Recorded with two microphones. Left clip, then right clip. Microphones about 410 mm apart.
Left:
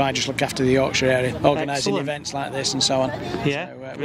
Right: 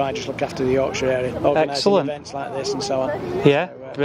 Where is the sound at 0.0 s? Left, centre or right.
Left.